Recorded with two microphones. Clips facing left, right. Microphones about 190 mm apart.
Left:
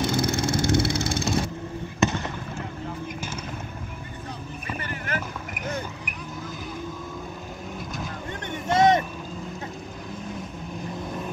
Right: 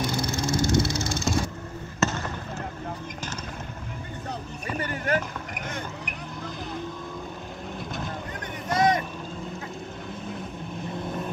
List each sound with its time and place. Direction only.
0.1 s vehicle: 50° left (ahead or behind)
4.6 s a sound: 40° right (ahead or behind)
8.6 s vehicle: 25° left (ahead or behind)